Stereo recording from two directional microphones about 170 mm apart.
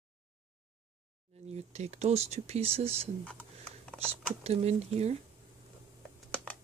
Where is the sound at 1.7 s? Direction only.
40° right (ahead or behind).